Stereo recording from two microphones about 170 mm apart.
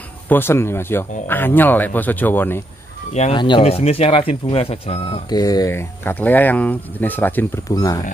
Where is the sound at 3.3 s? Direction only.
30° left (ahead or behind).